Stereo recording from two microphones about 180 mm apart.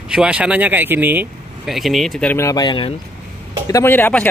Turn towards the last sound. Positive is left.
turn(degrees=10)  # may be behind; listen again after turning